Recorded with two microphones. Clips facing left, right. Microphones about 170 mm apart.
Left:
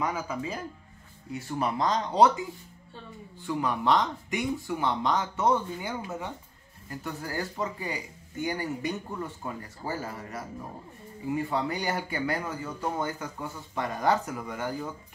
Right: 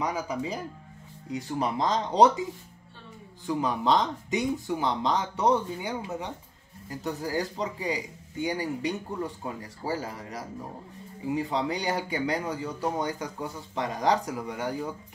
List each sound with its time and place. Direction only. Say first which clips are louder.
0.0 s speech: right 1 dB; 15° right (ahead or behind)
3.4 s speech: right 1 dB; 20° right (ahead or behind)